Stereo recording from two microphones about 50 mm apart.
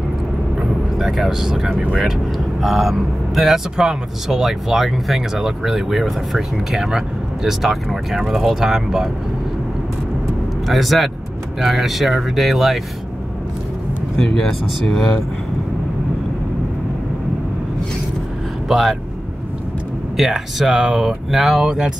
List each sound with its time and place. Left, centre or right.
0.6 s vehicle: centre
2.0 s speech: centre
10.7 s speech: centre
14.1 s speech: centre
18.7 s speech: centre
20.2 s speech: centre
21.6 s speech: centre